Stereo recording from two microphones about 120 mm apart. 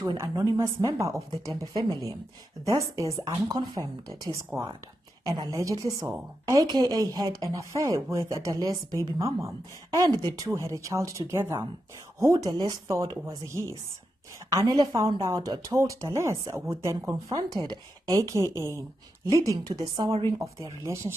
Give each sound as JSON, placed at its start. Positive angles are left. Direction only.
{"t": 0.2, "sound": "a woman's voice", "side_deg": -25}
{"t": 20.1, "sound": "speech", "side_deg": -50}
{"t": 20.3, "sound": "a woman's voice", "side_deg": -25}